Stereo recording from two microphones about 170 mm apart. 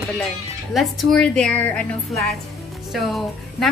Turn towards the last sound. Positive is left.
turn(degrees=0)  # may be behind; listen again after turning